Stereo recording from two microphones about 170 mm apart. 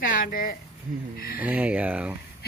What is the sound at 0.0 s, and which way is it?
Speech, 55° left (ahead or behind).